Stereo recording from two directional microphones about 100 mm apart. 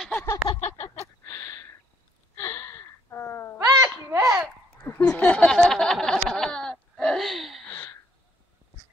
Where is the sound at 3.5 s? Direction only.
40° right (ahead or behind).